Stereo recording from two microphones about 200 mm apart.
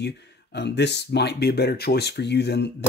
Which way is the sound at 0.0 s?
60° left (ahead or behind).